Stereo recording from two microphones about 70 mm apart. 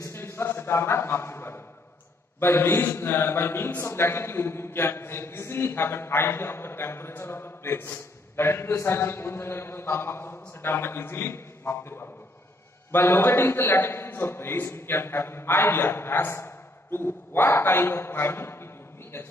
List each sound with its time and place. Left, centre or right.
0.0 s a man's voice: left